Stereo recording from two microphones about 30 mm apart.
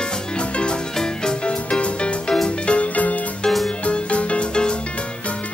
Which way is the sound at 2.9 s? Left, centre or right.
Left.